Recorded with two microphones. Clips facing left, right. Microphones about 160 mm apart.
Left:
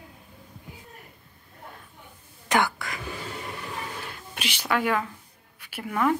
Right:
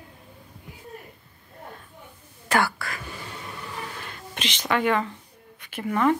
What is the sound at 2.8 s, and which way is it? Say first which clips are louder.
Speech: right 1 dB; 20° left (ahead or behind).